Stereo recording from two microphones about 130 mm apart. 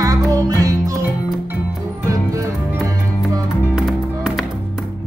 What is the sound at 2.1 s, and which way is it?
Music, 25° right (ahead or behind).